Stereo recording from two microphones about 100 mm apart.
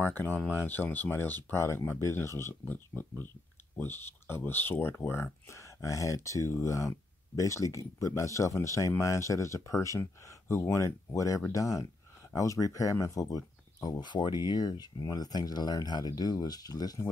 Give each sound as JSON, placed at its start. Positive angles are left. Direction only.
{"t": 0.0, "sound": "speech", "side_deg": 20}